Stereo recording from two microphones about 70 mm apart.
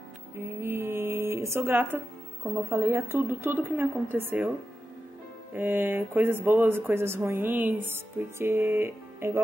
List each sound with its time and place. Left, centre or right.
0.4 s a sound: right
2.7 s speech: right
5.5 s speech: right